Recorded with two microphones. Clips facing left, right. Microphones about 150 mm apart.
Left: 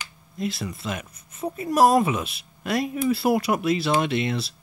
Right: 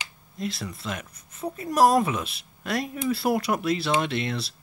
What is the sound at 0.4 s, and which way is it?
Speech, 10° left (ahead or behind).